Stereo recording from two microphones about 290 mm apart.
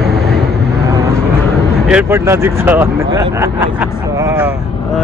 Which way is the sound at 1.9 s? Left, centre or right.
Centre.